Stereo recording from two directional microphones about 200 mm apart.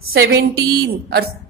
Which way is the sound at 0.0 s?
90° right.